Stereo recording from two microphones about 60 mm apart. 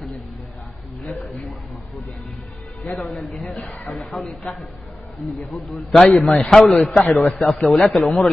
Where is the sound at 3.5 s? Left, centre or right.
Left.